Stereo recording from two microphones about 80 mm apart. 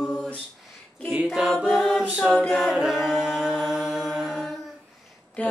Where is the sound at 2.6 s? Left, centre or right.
Centre.